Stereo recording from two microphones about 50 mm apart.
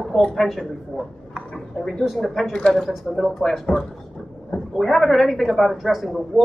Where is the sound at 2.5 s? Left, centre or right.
Centre.